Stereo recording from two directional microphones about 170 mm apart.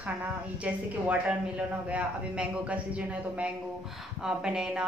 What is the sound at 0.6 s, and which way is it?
A woman's voice, 10° right (ahead or behind).